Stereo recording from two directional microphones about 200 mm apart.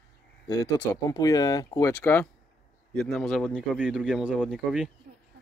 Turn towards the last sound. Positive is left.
turn(degrees=-5)  # may be behind; listen again after turning